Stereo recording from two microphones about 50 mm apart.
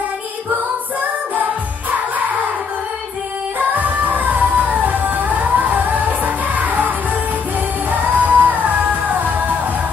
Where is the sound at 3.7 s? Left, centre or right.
Right.